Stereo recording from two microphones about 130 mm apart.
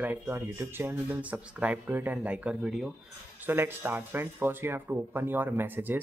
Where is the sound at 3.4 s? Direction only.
15° right (ahead or behind).